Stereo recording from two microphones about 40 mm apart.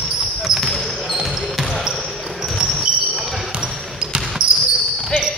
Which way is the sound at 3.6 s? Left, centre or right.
Centre.